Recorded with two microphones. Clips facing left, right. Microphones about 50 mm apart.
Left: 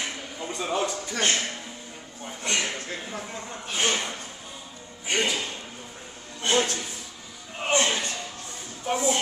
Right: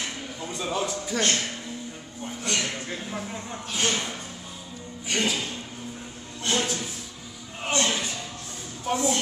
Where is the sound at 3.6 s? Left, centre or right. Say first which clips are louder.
Left 1 dB; centre.